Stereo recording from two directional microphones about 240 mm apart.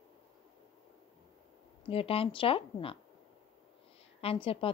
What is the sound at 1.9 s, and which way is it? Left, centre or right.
A woman's voice, left.